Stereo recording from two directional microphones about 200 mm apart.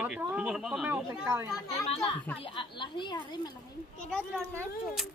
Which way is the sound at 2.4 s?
25° left (ahead or behind).